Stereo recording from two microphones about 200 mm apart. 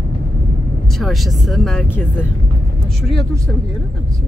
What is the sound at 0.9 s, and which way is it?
Speech, centre (ahead or behind).